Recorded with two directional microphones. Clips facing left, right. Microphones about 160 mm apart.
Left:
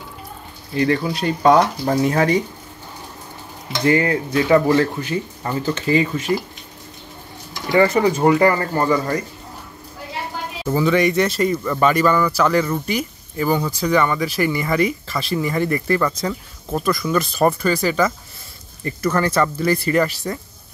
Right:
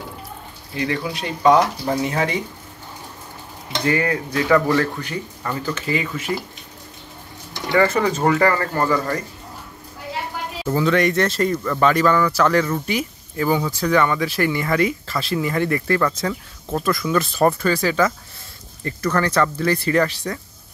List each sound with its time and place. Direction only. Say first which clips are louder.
0.7 s speech: left 5 dB; 40° left (ahead or behind)
3.8 s speech: left 4 dB; 30° left (ahead or behind)
7.7 s speech: left 2 dB; 15° left (ahead or behind)
10.7 s speech: left 1 dB; 10° left (ahead or behind)